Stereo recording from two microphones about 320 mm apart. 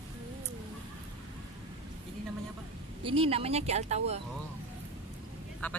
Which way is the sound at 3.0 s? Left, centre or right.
Centre.